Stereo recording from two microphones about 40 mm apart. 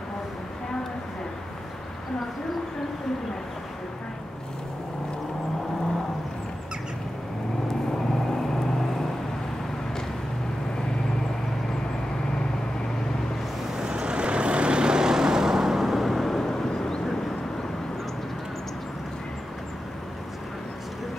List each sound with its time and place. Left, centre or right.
13.7 s vehicle: right; by 17.0 s centre